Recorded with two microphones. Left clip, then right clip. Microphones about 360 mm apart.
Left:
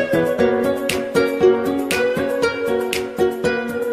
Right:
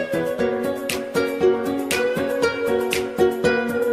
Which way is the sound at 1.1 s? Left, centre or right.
Left.